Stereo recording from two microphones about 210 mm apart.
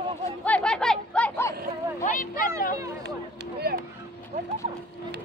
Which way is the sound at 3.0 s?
50° right (ahead or behind).